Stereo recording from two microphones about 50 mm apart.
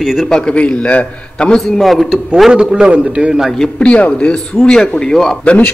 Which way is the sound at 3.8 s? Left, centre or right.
Left.